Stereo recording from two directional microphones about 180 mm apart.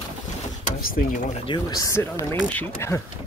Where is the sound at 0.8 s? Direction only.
55° left (ahead or behind).